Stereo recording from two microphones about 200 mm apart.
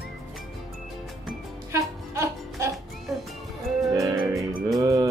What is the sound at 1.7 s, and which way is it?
Music, 15° right (ahead or behind).